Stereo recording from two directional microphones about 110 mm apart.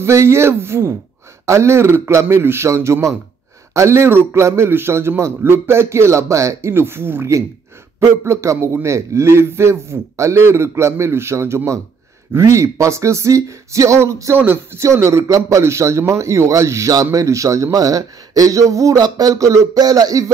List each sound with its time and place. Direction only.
0.0 s a man's voice: 25° right (ahead or behind)